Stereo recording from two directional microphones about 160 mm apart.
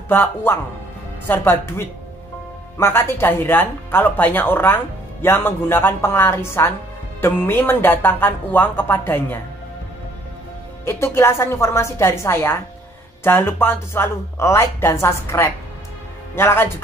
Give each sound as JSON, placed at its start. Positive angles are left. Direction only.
{"t": 0.1, "sound": "a woman's voice", "side_deg": 15}
{"t": 10.9, "sound": "a woman's voice", "side_deg": 15}